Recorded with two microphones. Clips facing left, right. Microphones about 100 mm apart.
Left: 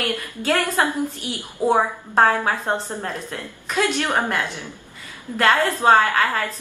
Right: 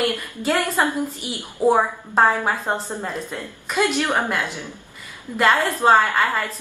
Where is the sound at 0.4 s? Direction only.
15° right (ahead or behind).